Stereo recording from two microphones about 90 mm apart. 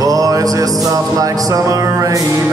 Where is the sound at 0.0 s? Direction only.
45° right (ahead or behind).